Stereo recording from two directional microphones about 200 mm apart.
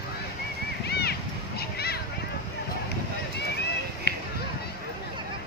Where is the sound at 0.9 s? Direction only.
55° left (ahead or behind).